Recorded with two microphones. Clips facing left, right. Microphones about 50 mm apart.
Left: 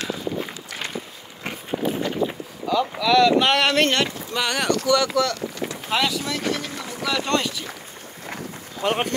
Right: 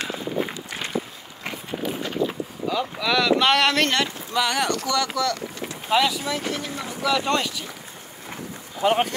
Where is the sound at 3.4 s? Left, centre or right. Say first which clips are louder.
Left 1 dB; centre.